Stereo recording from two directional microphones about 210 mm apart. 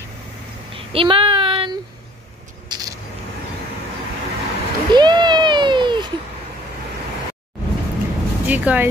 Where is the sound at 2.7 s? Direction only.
20° right (ahead or behind).